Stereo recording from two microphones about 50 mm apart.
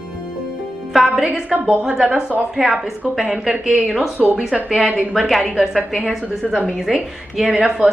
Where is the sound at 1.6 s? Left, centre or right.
Centre.